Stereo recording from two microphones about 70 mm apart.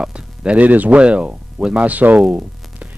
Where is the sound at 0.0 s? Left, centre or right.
Centre.